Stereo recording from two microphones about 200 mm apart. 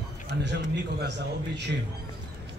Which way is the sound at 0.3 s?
55° right (ahead or behind).